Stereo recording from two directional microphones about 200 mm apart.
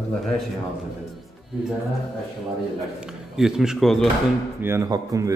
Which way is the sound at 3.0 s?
5° right (ahead or behind).